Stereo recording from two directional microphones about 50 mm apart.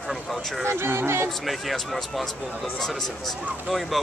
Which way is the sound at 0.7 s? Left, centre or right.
Right.